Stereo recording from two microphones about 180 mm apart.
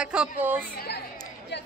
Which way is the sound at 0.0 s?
5° right (ahead or behind).